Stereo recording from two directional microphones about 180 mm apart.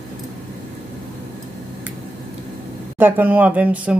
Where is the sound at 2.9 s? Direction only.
10° right (ahead or behind).